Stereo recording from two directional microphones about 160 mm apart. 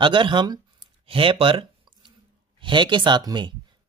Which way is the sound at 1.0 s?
35° right (ahead or behind).